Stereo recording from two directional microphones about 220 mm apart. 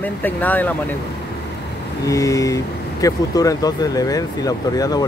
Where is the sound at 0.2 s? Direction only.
10° left (ahead or behind).